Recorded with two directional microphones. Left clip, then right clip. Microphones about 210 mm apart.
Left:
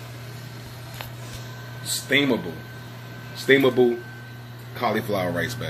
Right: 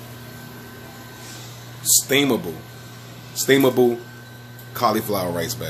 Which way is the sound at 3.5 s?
15° right (ahead or behind).